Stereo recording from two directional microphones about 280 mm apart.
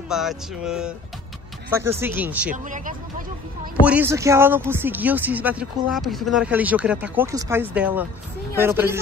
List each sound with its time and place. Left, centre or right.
0.1 s music: centre
1.7 s speech: centre
2.5 s speech: right
3.8 s speech: centre